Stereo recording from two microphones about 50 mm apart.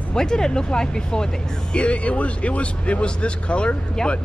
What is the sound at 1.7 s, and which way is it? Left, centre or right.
Speech, left.